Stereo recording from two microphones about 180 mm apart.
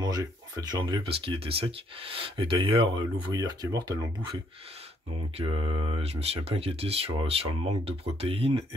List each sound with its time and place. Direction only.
0.0 s speech: 20° right (ahead or behind)
5.4 s speech: 30° right (ahead or behind)